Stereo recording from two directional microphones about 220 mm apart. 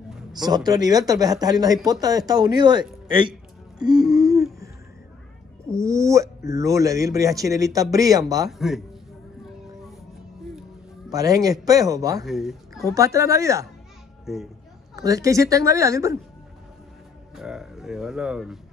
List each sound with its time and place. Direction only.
0.3 s a man's voice: 20° right (ahead or behind)
4.1 s a sound: 15° right (ahead or behind)
5.7 s a man's voice: 15° right (ahead or behind)
8.5 s speech: centre (ahead or behind)
11.1 s a man's voice: 15° right (ahead or behind)
12.3 s a woman's voice: centre (ahead or behind)
12.8 s a man's voice: 15° right (ahead or behind)
14.2 s speech: centre (ahead or behind)
15.0 s a man's voice: 15° right (ahead or behind)
17.4 s speech: centre (ahead or behind)